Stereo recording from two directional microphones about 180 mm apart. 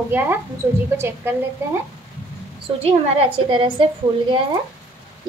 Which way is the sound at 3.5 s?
30° right (ahead or behind).